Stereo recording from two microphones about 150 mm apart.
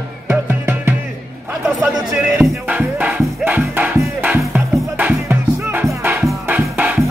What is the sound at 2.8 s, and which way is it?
Music, 10° right (ahead or behind).